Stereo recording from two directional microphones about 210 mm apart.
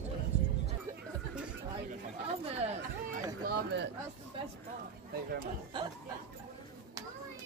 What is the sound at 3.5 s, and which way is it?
Speech, 50° right (ahead or behind).